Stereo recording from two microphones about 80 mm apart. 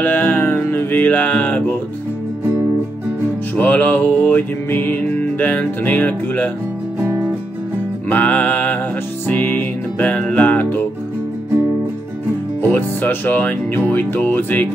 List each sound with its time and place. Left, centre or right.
0.0 s music: left
3.5 s music: left
7.0 s music: right
8.1 s music: left
12.7 s music: left